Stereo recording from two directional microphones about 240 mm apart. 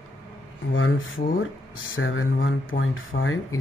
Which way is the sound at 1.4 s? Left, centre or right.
Left.